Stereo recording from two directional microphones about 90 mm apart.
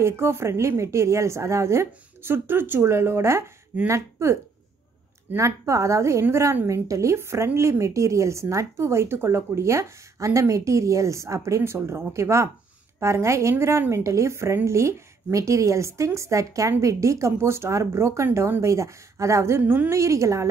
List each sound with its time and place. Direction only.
0.0 s a woman's voice: 30° right (ahead or behind)
19.6 s a woman's voice: 20° right (ahead or behind)
19.9 s speech: 35° right (ahead or behind)